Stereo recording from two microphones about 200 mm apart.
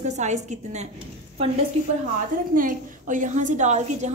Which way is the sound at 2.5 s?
40° right (ahead or behind).